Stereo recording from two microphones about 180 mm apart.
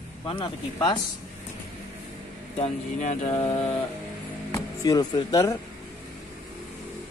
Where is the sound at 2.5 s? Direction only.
40° left (ahead or behind); by 5.6 s 20° left (ahead or behind).